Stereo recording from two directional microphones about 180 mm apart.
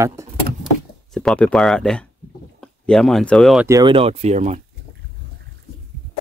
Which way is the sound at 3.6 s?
25° right (ahead or behind).